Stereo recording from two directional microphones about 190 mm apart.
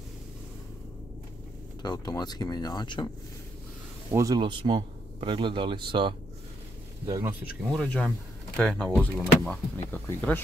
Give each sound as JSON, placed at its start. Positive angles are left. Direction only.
{"t": 1.8, "sound": "speech", "side_deg": 20}
{"t": 4.1, "sound": "speech", "side_deg": -15}
{"t": 7.7, "sound": "speech", "side_deg": 5}